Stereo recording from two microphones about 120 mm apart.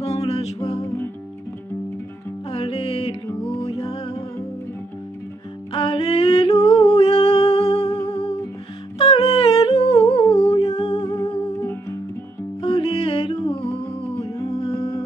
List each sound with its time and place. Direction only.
0.0 s music: 60° left (ahead or behind)
2.5 s music: 50° left (ahead or behind)
5.7 s a sound: 50° left (ahead or behind)
8.1 s humming: 60° left (ahead or behind)
11.1 s music: 25° left (ahead or behind)
12.6 s music: 50° left (ahead or behind)